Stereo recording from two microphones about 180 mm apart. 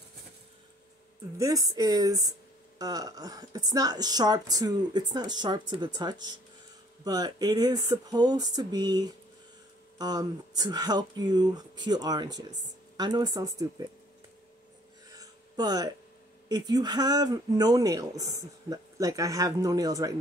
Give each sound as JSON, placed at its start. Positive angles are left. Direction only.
{"t": 1.4, "sound": "speech", "side_deg": -20}
{"t": 15.0, "sound": "a sound", "side_deg": -20}
{"t": 16.4, "sound": "speech", "side_deg": -20}